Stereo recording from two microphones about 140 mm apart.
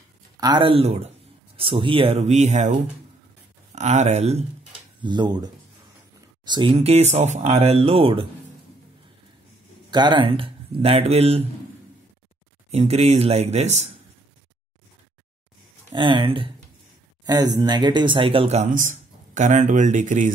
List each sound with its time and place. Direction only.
0.4 s speech: 35° right (ahead or behind); by 4.5 s 50° right (ahead or behind)
5.0 s speech: 30° right (ahead or behind)
9.8 s speech: 30° right (ahead or behind)
12.7 s speech: 50° right (ahead or behind)
15.9 s speech: 35° right (ahead or behind)
18.6 s speech: 70° right (ahead or behind)